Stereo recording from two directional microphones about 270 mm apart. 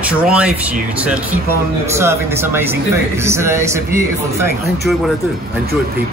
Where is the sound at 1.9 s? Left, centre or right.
Centre.